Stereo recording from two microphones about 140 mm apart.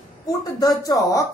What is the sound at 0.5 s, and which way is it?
Speech, 25° left (ahead or behind).